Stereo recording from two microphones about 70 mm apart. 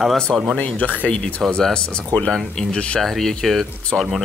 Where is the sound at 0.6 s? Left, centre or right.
Left.